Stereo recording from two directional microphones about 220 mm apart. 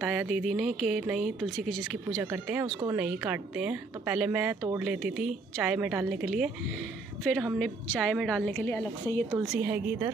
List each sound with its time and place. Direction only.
0.0 s a woman's voice: 5° right (ahead or behind)
3.0 s speech: 5° right (ahead or behind)
9.4 s a woman's voice: 5° right (ahead or behind)